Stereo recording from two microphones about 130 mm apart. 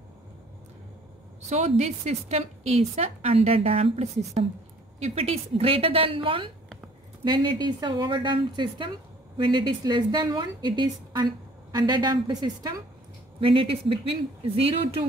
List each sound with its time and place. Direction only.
1.5 s a woman's voice: 55° right (ahead or behind); by 12.8 s 30° right (ahead or behind)
13.4 s a woman's voice: 45° right (ahead or behind)